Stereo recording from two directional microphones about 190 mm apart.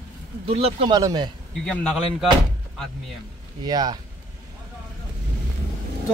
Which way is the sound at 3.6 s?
20° right (ahead or behind).